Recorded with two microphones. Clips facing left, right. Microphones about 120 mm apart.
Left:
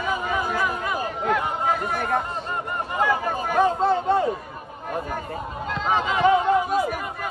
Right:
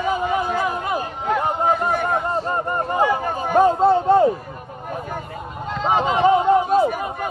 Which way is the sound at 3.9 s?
30° right (ahead or behind).